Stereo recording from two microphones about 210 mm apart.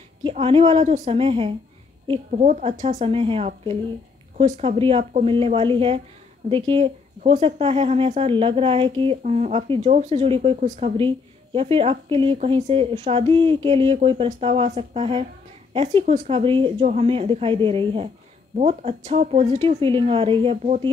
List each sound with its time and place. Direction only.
0.2 s speech: 25° right (ahead or behind)